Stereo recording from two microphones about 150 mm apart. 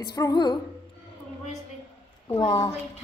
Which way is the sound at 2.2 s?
25° left (ahead or behind).